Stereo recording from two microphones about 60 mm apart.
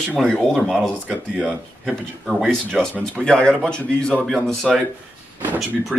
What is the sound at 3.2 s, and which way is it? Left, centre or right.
Speech, centre.